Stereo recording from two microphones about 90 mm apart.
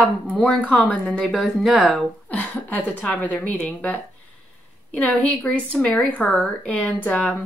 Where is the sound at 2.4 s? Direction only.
20° left (ahead or behind).